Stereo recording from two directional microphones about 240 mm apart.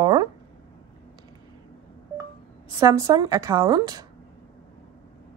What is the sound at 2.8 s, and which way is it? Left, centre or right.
A woman's voice, centre.